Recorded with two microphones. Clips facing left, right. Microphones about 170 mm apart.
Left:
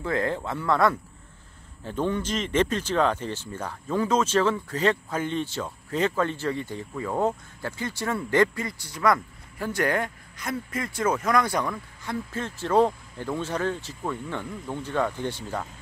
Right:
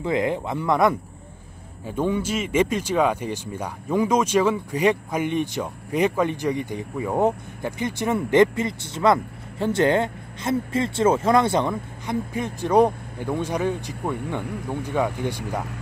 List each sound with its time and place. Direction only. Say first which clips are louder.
0.0 s speech: right 4 dB; 15° right (ahead or behind)